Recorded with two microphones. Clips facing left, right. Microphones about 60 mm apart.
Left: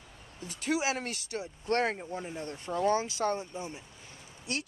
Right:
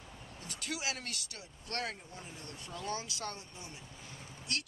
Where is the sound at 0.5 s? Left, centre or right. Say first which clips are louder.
Left 9 dB; left.